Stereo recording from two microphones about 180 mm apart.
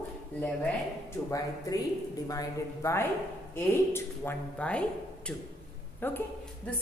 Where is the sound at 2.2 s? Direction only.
15° left (ahead or behind).